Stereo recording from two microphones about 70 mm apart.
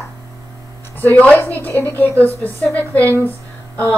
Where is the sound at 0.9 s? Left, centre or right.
Left.